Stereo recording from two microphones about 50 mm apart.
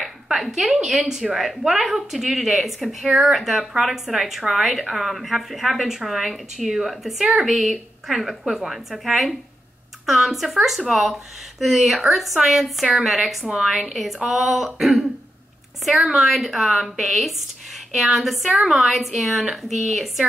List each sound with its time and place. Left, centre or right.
0.0 s a sound: centre
0.8 s a woman's voice: centre
13.5 s a woman's voice: centre
13.8 s a woman's voice: centre